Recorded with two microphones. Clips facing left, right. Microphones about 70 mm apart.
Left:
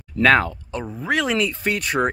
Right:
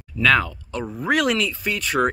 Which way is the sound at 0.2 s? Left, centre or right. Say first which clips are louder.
Left 2 dB; left.